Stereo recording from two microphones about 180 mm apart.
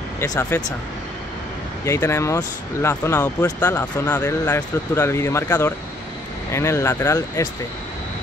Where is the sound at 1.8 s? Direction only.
15° left (ahead or behind).